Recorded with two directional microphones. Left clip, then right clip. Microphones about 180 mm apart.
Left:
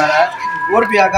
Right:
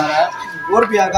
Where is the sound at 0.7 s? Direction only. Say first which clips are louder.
Left 1 dB; 5° right (ahead or behind).